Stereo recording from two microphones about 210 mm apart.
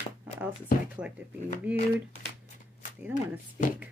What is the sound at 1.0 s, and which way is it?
Speech, 5° right (ahead or behind).